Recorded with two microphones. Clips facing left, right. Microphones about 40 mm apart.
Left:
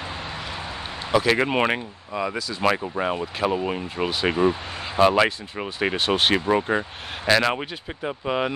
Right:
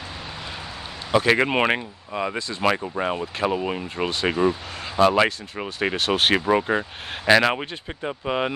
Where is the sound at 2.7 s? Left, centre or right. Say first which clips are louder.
Even; centre.